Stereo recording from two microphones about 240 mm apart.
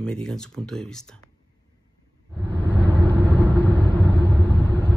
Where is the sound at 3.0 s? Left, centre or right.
Centre.